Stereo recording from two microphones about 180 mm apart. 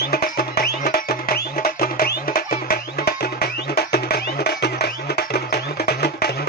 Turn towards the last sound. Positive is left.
turn(degrees=60)  # may be behind; listen again after turning